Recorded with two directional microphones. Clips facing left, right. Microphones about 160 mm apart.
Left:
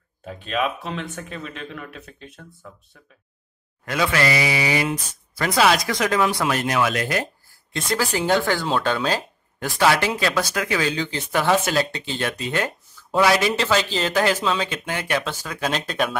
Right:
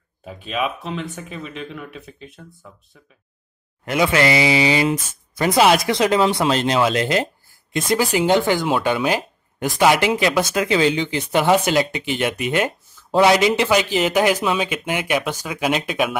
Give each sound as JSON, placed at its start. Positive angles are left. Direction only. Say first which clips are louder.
{"t": 0.2, "sound": "speech", "louder": "even", "side_deg": -5}
{"t": 3.8, "sound": "speech", "louder": "right 4 dB", "side_deg": -20}